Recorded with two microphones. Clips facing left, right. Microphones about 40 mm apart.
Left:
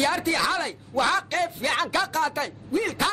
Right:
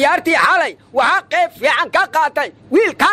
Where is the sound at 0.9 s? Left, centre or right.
Right.